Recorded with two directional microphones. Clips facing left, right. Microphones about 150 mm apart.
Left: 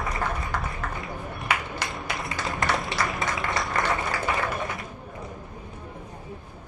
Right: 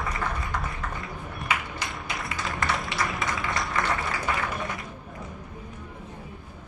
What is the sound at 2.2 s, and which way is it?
Applause, centre (ahead or behind).